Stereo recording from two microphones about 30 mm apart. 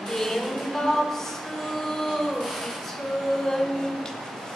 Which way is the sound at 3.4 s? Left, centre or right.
Centre.